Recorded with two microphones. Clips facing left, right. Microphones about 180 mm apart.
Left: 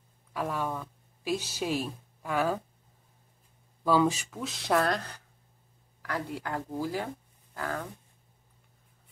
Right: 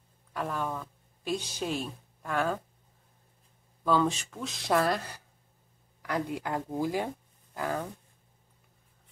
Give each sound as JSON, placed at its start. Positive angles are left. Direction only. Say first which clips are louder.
{"t": 0.3, "sound": "a woman's voice", "louder": "left 1 dB", "side_deg": 5}
{"t": 3.8, "sound": "speech", "louder": "left 2 dB", "side_deg": 5}